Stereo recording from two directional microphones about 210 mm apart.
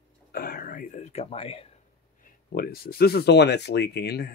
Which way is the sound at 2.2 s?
45° left (ahead or behind).